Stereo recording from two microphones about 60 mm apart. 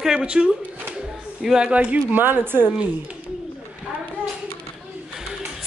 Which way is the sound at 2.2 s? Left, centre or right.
Right.